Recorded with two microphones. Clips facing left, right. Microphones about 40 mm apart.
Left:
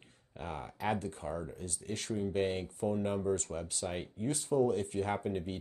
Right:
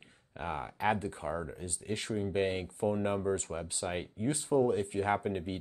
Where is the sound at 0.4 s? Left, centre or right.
Right.